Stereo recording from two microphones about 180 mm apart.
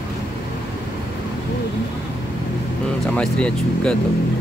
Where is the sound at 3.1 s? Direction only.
5° left (ahead or behind).